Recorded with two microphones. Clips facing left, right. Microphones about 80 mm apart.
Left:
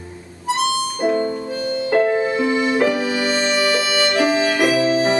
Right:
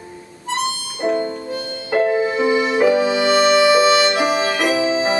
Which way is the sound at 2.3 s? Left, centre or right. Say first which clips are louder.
Right 1 dB; right.